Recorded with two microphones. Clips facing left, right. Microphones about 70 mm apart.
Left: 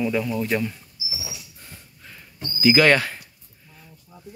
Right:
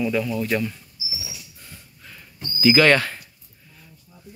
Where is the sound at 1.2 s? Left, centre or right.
Left.